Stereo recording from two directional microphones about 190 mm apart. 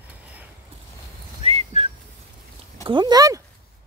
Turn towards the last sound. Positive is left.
turn(degrees=-20)  # may be behind; listen again after turning